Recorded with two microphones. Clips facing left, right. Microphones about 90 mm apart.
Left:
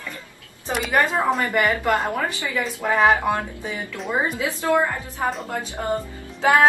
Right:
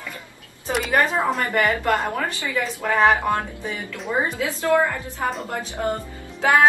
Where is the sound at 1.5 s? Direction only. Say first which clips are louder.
Even; 15° left (ahead or behind).